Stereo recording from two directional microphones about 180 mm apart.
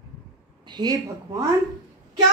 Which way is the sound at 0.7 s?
25° right (ahead or behind).